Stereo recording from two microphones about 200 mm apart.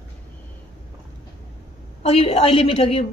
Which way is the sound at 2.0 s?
30° left (ahead or behind).